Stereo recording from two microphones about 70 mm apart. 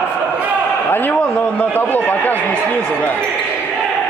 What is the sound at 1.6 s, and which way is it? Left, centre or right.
Speech, left.